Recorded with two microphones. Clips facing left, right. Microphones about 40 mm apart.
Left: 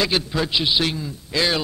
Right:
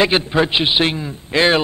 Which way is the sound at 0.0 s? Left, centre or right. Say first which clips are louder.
Right 6 dB; right.